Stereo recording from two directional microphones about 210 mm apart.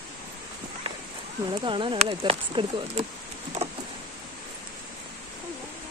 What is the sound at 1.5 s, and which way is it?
Speech, 25° right (ahead or behind).